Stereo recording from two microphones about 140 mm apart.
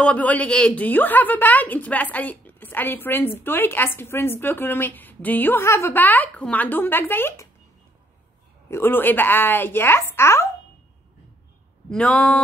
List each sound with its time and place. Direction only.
0.0 s a woman's voice: 10° left (ahead or behind)
8.6 s a woman's voice: 15° left (ahead or behind)
11.9 s a sound: 5° left (ahead or behind)